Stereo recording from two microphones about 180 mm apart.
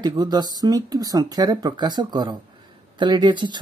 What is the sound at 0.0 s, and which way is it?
Speech, 25° right (ahead or behind).